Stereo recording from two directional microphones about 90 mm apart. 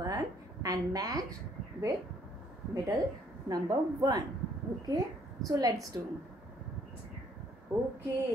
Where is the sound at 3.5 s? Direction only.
45° right (ahead or behind).